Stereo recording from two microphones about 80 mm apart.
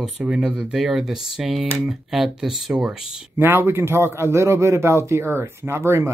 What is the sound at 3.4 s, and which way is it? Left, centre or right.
A man's voice, right.